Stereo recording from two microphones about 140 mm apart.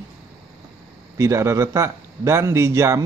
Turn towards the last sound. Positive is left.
turn(degrees=-20)  # may be behind; listen again after turning